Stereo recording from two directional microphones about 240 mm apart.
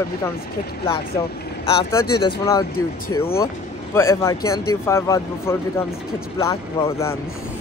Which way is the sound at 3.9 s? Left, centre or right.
Centre.